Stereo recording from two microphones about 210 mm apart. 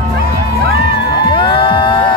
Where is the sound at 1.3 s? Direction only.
25° left (ahead or behind).